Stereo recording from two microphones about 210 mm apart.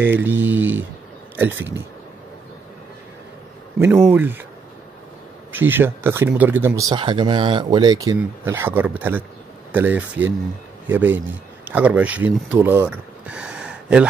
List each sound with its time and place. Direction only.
0.0 s speech: 10° right (ahead or behind)
3.8 s speech: 10° right (ahead or behind)
5.5 s speech: 10° right (ahead or behind)